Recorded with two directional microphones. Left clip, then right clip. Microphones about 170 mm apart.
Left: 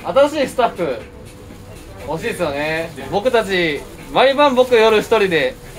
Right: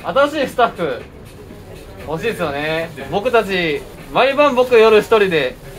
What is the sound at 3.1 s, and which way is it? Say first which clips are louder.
Speech: even; 15° left (ahead or behind).